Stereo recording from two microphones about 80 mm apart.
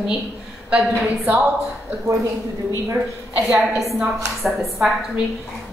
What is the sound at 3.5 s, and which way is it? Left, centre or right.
A woman's voice, centre.